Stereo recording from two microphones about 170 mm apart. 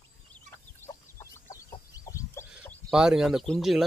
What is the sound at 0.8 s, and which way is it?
Chicken, 15° left (ahead or behind).